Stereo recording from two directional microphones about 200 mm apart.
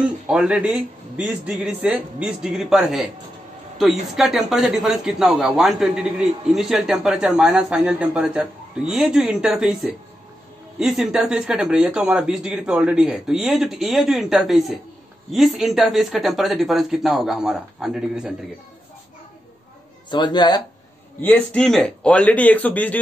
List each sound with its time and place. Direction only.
0.3 s speech: 5° right (ahead or behind)
20.1 s speech: 20° left (ahead or behind)
21.2 s a man's voice: 10° left (ahead or behind)